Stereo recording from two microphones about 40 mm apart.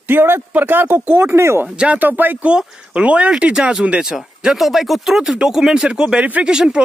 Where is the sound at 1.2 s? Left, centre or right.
Right.